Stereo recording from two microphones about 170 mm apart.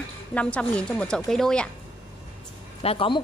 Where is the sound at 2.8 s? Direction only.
30° left (ahead or behind).